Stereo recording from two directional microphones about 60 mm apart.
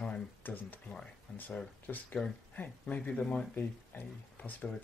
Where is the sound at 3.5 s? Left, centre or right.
Left.